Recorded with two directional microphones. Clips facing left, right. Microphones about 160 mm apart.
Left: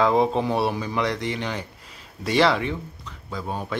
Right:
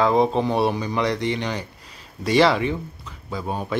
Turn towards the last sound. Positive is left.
turn(degrees=-5)  # may be behind; listen again after turning